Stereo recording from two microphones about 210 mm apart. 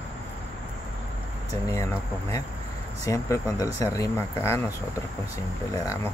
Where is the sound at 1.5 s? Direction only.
15° left (ahead or behind).